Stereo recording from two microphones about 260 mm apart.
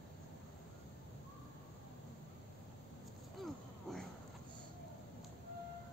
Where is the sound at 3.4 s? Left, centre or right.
Centre.